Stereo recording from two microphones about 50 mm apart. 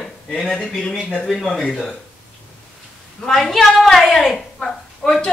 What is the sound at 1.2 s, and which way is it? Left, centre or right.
Speech, centre.